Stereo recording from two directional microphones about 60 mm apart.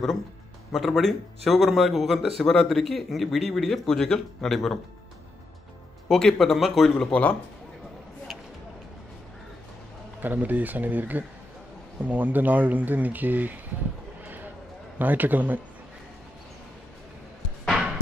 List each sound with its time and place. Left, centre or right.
0.7 s speech: centre
6.0 s speech: centre
7.0 s speech: left
10.2 s speech: right
14.2 s clip-clop: right
15.0 s speech: right